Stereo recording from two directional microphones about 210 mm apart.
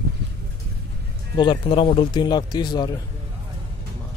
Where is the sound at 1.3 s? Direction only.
25° left (ahead or behind).